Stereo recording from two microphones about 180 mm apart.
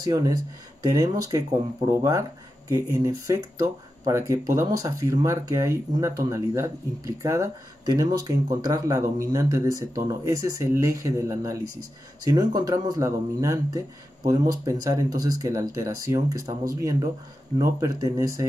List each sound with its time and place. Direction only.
0.0 s speech: 20° right (ahead or behind)